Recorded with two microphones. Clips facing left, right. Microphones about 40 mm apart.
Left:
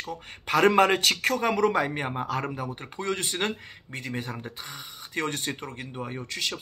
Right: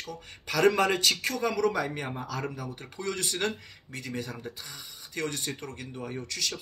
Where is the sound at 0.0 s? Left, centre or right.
Left.